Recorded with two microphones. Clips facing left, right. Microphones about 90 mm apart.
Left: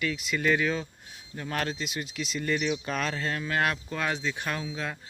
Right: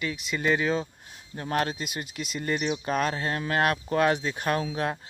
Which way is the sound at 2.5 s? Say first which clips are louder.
Right 2 dB; 30° right (ahead or behind).